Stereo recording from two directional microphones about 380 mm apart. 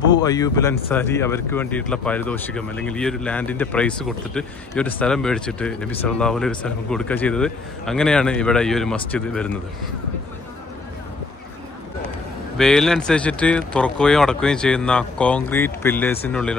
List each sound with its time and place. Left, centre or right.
0.1 s speech: centre
12.5 s speech: centre